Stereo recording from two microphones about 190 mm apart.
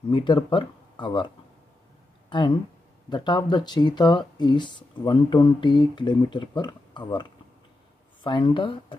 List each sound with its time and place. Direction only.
0.1 s speech: 25° left (ahead or behind)
2.2 s a sound: 25° left (ahead or behind)
3.1 s speech: 25° left (ahead or behind)